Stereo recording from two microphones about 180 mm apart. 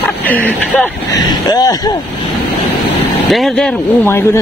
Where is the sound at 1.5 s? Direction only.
20° left (ahead or behind).